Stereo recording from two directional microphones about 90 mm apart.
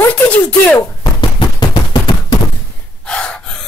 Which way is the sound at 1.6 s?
60° left (ahead or behind).